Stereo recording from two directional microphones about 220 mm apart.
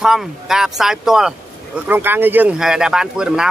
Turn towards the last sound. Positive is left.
turn(degrees=-5)  # may be behind; listen again after turning